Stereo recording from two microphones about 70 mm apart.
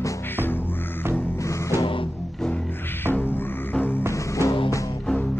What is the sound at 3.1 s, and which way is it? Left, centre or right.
Music, left.